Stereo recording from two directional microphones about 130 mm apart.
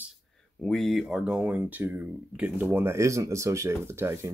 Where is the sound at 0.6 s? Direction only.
Centre (ahead or behind).